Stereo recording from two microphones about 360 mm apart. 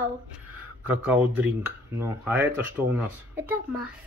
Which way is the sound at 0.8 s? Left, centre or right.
Centre.